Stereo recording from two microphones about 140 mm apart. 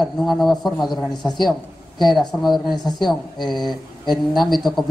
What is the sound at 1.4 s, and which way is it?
Speech, 30° left (ahead or behind).